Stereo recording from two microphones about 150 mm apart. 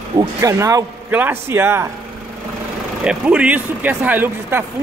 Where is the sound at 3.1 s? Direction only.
10° right (ahead or behind).